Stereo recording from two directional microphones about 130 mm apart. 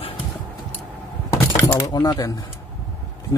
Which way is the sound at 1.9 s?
30° left (ahead or behind).